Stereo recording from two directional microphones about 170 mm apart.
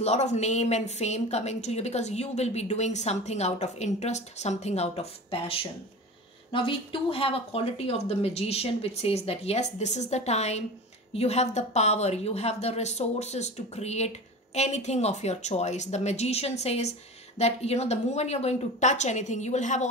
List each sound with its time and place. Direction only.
0.0 s a woman's voice: 40° left (ahead or behind)